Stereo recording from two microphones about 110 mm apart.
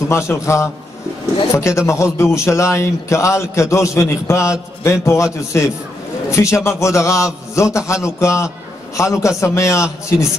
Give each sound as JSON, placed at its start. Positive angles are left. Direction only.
{"t": 0.1, "sound": "a man's voice", "side_deg": 25}